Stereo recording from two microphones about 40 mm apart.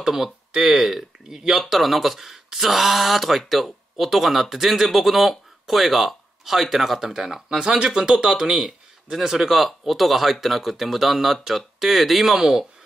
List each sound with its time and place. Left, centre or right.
0.0 s speech: centre
7.4 s speech: right